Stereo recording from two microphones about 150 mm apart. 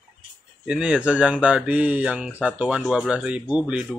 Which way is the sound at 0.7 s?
5° right (ahead or behind).